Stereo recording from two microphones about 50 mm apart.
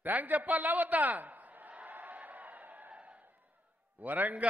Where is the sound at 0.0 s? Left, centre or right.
Right.